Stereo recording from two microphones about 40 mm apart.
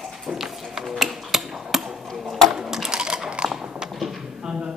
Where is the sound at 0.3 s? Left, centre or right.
Centre.